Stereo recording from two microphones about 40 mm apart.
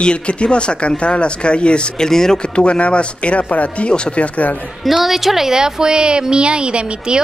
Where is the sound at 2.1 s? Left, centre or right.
Centre.